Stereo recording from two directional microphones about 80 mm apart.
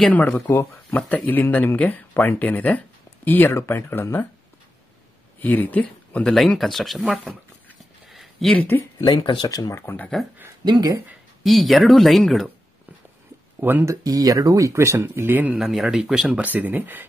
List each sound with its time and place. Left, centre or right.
0.1 s speech: left
5.4 s speech: left
6.3 s speech: centre
8.1 s a sound: centre
8.9 s speech: left
9.5 s speech: left
10.6 s speech: right
11.4 s speech: centre
13.6 s speech: right
13.8 s speech: right
15.0 s speech: right
15.6 s speech: centre
16.3 s speech: centre